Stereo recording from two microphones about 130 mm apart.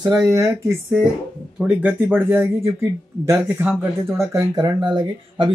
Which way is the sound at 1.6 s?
10° right (ahead or behind).